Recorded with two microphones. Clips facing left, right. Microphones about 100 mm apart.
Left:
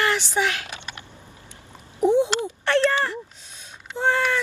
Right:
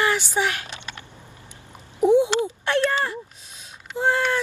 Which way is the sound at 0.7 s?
15° left (ahead or behind).